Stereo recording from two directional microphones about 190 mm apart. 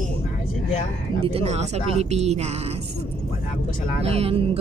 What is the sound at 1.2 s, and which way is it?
Speech, 30° right (ahead or behind).